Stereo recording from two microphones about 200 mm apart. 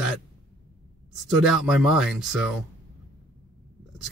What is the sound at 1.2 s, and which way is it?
A man's voice, centre (ahead or behind).